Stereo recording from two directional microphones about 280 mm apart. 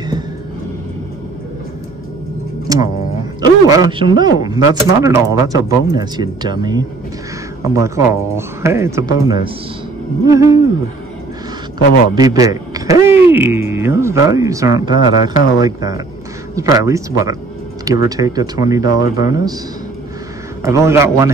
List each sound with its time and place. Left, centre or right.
2.7 s a sound: centre
3.3 s speech: centre
12.2 s a man's voice: centre
18.9 s speech: left
19.1 s speech: centre
20.6 s speech: centre